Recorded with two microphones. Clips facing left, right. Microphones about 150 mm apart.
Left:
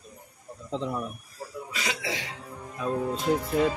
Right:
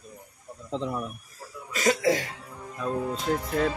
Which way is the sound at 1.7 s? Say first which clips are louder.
Right 11 dB; 45° right (ahead or behind).